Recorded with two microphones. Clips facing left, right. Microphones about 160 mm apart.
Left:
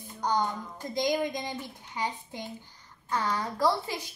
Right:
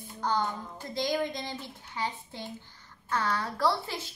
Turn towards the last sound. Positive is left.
turn(degrees=15)  # may be behind; listen again after turning